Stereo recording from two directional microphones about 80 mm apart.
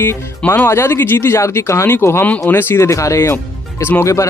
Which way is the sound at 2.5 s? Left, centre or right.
Left.